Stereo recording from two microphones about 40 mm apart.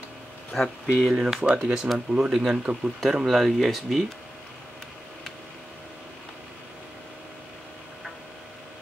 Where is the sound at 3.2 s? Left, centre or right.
Centre.